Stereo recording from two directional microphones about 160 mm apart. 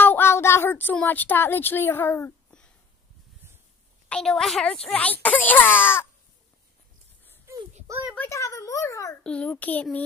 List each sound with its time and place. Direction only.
0.0 s speech: 15° left (ahead or behind)
4.1 s a woman's voice: 5° left (ahead or behind)
8.3 s a child's voice: 20° left (ahead or behind)
9.2 s speech: 5° left (ahead or behind)